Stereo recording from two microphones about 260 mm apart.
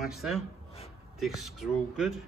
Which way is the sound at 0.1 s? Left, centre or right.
Centre.